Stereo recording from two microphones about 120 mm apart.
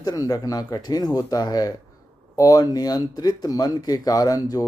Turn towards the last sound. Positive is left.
turn(degrees=30)  # may be behind; listen again after turning